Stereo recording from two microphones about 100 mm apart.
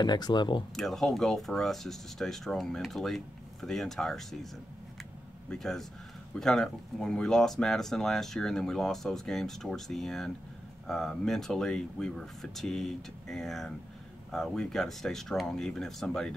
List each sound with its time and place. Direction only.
0.0 s speech: 45° left (ahead or behind)
0.7 s speech: centre (ahead or behind)
5.5 s speech: 5° left (ahead or behind)